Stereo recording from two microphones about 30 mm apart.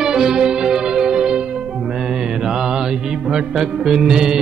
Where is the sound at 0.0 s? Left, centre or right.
Right.